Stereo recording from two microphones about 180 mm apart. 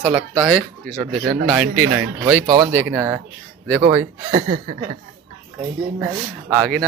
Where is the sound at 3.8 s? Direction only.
30° right (ahead or behind).